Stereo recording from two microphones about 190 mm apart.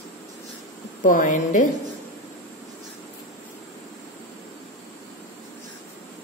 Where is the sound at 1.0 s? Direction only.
45° left (ahead or behind).